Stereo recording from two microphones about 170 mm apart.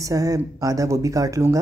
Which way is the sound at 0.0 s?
20° right (ahead or behind).